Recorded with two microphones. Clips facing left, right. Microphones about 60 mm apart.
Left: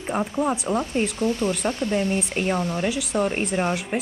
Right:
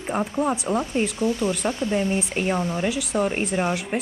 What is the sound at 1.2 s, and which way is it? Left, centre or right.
Speech, left.